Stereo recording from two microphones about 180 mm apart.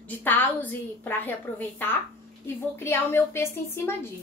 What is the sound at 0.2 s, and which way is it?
A woman's voice, 10° left (ahead or behind).